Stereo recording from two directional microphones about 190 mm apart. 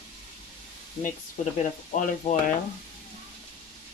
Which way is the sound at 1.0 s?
40° left (ahead or behind).